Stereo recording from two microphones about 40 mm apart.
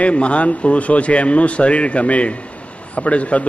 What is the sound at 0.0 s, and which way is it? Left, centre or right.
Speech, left.